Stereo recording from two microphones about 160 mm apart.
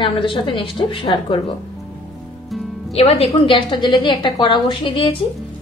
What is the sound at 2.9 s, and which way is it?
A woman's voice, 40° left (ahead or behind).